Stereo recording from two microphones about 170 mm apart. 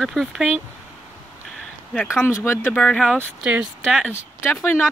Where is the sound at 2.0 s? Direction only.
15° left (ahead or behind).